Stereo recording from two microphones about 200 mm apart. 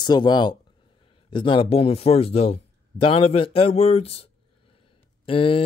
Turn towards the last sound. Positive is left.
turn(degrees=25)  # may be behind; listen again after turning